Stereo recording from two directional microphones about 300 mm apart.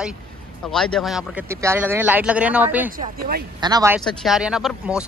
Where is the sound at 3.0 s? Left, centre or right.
Right.